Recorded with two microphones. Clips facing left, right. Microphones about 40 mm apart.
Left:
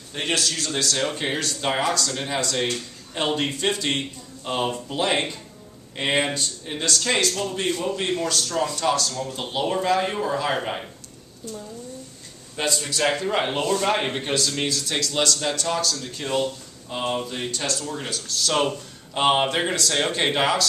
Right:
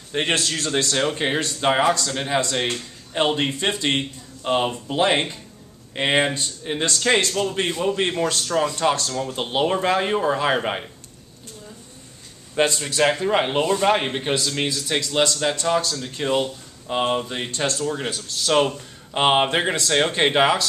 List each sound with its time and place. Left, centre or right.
0.1 s a man's voice: right
12.5 s a man's voice: right